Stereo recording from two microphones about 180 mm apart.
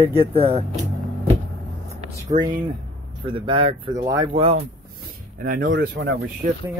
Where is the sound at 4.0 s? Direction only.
15° right (ahead or behind).